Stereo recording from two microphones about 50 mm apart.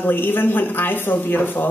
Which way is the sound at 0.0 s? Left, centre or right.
Left.